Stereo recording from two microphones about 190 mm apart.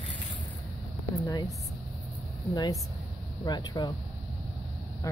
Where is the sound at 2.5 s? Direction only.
20° left (ahead or behind).